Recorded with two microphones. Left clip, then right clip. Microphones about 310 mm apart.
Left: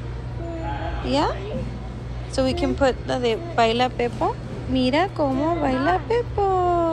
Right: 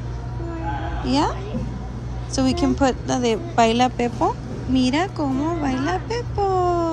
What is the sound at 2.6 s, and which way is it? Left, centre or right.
A woman's voice, centre.